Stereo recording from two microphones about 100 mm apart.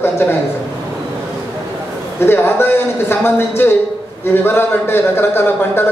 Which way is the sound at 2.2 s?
25° left (ahead or behind).